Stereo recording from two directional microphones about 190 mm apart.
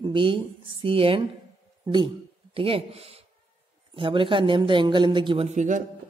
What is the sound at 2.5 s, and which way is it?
Speech, 30° right (ahead or behind).